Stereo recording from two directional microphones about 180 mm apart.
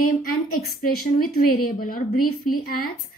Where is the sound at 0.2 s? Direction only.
50° left (ahead or behind).